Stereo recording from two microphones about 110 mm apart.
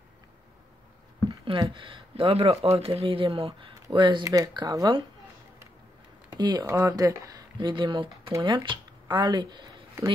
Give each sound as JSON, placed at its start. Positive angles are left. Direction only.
{"t": 1.4, "sound": "speech", "side_deg": -50}
{"t": 4.3, "sound": "speech", "side_deg": -35}
{"t": 6.3, "sound": "speech", "side_deg": -40}
{"t": 6.6, "sound": "speech", "side_deg": -30}
{"t": 7.5, "sound": "speech", "side_deg": -45}